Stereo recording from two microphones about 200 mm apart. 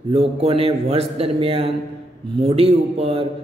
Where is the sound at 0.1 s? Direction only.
25° right (ahead or behind).